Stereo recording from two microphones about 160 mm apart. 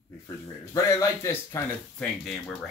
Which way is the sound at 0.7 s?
20° left (ahead or behind).